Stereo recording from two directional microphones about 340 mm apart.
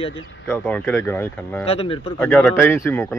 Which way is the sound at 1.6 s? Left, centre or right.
Centre.